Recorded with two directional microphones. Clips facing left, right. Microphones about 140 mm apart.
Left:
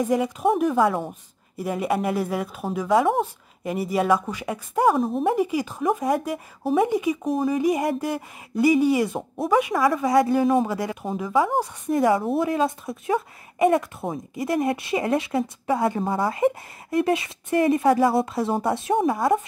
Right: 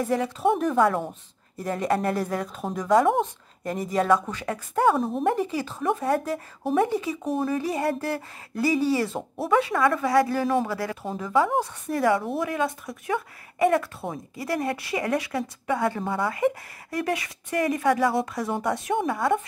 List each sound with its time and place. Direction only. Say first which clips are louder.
0.0 s speech: left 2 dB; 15° left (ahead or behind)
11.1 s speech: left 1 dB; 5° left (ahead or behind)
11.9 s speech: left 3 dB; 25° left (ahead or behind)